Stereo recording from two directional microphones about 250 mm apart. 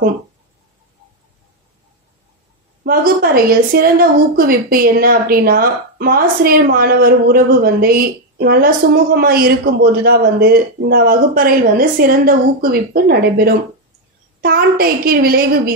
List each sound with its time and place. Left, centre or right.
2.8 s a woman's voice: right